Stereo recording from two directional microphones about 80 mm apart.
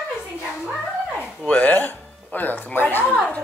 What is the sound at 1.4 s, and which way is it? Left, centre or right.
Speech, centre.